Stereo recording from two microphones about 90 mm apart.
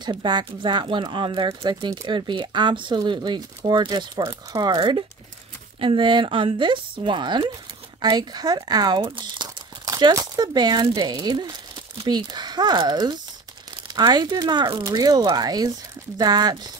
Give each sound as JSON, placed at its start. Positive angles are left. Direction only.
{"t": 0.0, "sound": "speech", "side_deg": -55}
{"t": 9.0, "sound": "speech", "side_deg": -65}